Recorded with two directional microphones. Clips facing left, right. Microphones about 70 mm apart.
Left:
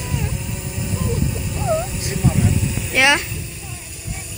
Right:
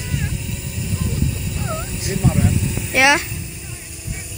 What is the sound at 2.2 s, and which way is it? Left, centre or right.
Speech, centre.